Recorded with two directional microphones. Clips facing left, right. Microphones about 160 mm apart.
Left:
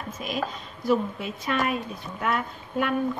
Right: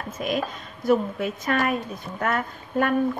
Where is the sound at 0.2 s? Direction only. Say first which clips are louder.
Right 4 dB; 50° right (ahead or behind).